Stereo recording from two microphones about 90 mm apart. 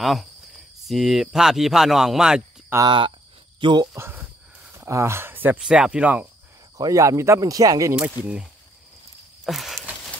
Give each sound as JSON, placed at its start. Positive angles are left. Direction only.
{"t": 0.0, "sound": "speech", "side_deg": 0}
{"t": 2.7, "sound": "speech", "side_deg": -25}
{"t": 3.6, "sound": "speech", "side_deg": -60}
{"t": 3.9, "sound": "a sound", "side_deg": -25}
{"t": 4.7, "sound": "speech", "side_deg": -30}
{"t": 5.6, "sound": "speech", "side_deg": -10}
{"t": 6.8, "sound": "speech", "side_deg": -35}
{"t": 9.4, "sound": "a sound", "side_deg": 0}